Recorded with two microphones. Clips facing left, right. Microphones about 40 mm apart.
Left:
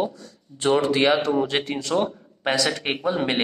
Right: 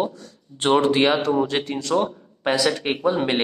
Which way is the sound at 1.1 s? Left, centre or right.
Centre.